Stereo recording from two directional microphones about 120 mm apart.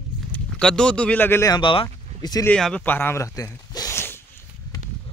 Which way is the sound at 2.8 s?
15° left (ahead or behind).